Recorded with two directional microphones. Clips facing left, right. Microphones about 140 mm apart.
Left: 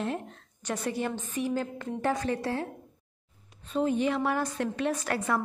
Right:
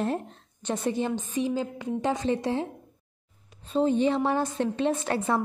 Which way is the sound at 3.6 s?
30° right (ahead or behind).